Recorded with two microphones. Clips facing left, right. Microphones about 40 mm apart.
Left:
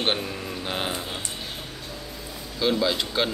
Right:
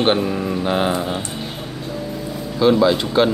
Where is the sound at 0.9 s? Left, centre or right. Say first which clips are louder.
Right 10 dB; right.